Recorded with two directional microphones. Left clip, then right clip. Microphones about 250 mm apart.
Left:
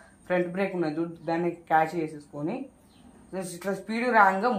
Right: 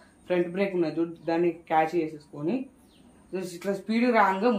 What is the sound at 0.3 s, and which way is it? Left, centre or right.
Speech, centre.